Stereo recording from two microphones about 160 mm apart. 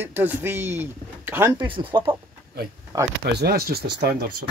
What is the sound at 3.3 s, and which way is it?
Speech, 85° right.